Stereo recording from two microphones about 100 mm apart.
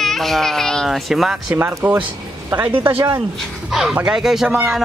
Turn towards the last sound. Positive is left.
turn(degrees=-20)  # may be behind; listen again after turning